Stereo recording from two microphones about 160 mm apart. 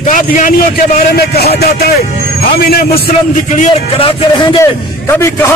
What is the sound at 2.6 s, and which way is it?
Speech, 70° left (ahead or behind).